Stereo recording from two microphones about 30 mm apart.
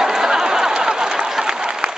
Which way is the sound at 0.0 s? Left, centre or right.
Centre.